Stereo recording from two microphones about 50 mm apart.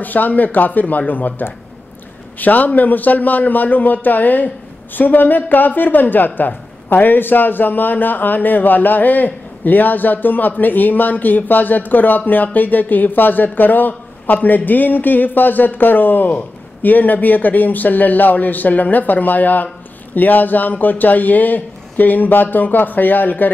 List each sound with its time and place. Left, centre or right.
0.0 s a woman's voice: left